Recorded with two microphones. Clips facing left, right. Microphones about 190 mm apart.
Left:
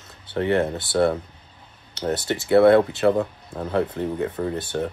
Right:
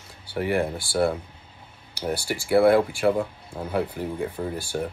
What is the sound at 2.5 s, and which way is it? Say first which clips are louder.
Speech: left 3 dB; 10° right (ahead or behind).